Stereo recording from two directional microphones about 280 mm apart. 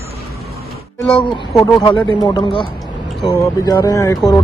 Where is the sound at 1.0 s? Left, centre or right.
Centre.